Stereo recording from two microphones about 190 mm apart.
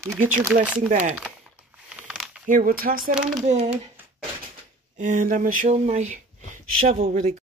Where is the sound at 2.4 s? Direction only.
45° right (ahead or behind).